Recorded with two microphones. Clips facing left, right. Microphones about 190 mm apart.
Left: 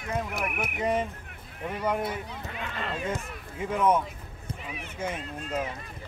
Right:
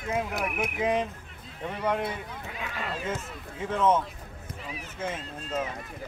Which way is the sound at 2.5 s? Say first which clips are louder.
Even; 10° right (ahead or behind).